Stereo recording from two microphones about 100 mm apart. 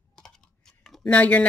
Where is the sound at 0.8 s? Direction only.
5° left (ahead or behind).